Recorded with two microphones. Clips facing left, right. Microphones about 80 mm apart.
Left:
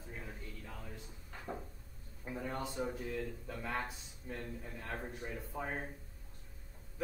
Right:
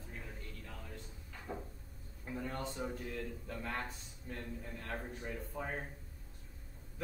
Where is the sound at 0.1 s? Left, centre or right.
Centre.